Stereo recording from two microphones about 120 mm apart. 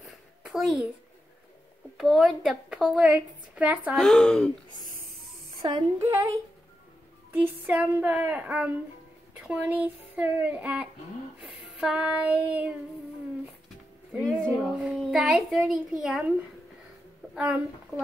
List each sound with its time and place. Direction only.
0.4 s a child's voice: 5° right (ahead or behind)
2.0 s a woman's voice: centre (ahead or behind)
3.9 s speech: 5° left (ahead or behind)
5.6 s a woman's voice: 30° right (ahead or behind)
7.4 s a woman's voice: 15° right (ahead or behind)
11.4 s child singing: 10° right (ahead or behind)
14.2 s a child's voice: centre (ahead or behind)
17.4 s a woman's voice: 10° right (ahead or behind)